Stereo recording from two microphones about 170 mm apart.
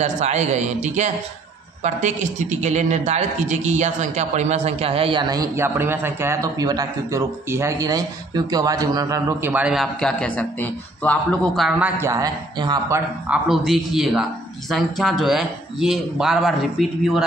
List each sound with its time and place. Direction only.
0.0 s a man's voice: 40° right (ahead or behind); by 11.6 s 10° left (ahead or behind)
12.0 s a man's voice: 20° right (ahead or behind)
13.3 s a man's voice: 5° right (ahead or behind)